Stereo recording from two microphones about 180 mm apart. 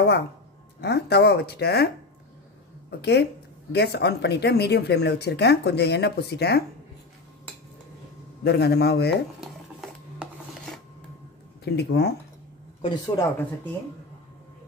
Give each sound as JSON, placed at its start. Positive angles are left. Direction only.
{"t": 0.7, "sound": "speech", "side_deg": 65}
{"t": 3.0, "sound": "speech", "side_deg": 65}
{"t": 8.5, "sound": "speech", "side_deg": 65}
{"t": 9.8, "sound": "filing", "side_deg": 0}
{"t": 11.6, "sound": "speech", "side_deg": 65}
{"t": 12.8, "sound": "speech", "side_deg": 20}